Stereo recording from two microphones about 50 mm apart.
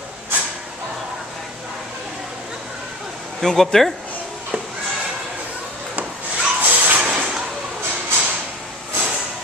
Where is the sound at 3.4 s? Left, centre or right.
Centre.